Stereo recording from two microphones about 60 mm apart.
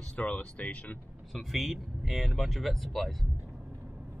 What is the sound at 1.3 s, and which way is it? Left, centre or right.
Speech, centre.